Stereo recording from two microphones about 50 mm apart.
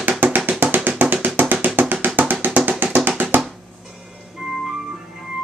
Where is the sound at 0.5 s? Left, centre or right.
Right.